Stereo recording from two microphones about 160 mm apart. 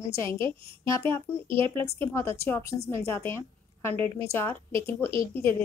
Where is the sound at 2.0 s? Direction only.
15° left (ahead or behind).